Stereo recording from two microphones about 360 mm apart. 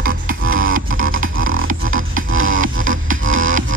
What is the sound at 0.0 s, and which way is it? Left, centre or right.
Music, right.